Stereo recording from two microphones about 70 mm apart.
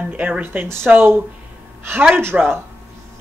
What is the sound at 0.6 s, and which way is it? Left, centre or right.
Speech, right.